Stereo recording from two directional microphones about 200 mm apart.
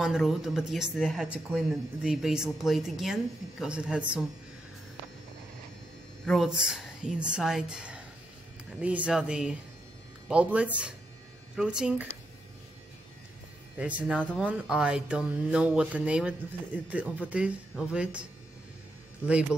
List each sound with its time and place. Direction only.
0.0 s speech: centre (ahead or behind)
6.2 s speech: centre (ahead or behind)
13.7 s speech: 5° right (ahead or behind)